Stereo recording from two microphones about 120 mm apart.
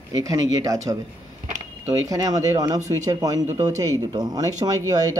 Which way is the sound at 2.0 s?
30° right (ahead or behind).